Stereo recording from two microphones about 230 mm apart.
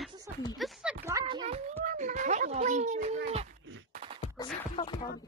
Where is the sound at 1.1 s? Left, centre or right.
Centre.